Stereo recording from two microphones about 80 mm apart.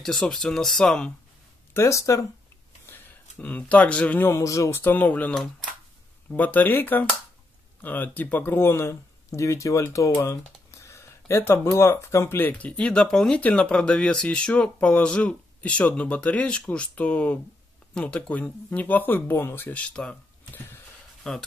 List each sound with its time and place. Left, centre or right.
0.0 s speech: centre
1.7 s speech: left
3.3 s speech: centre
4.3 s speech: left
4.8 s speech: left
6.3 s speech: left
12.4 s speech: centre
21.2 s speech: centre